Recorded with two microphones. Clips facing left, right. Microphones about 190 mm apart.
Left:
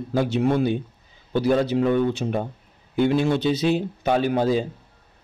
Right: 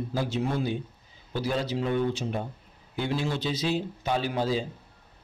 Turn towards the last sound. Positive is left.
turn(degrees=55)  # may be behind; listen again after turning